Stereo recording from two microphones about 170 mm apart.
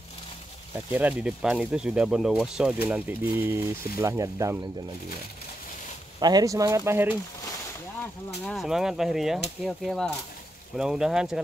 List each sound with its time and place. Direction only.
0.7 s speech: 10° right (ahead or behind)
6.1 s speech: 25° right (ahead or behind)
8.5 s speech: centre (ahead or behind)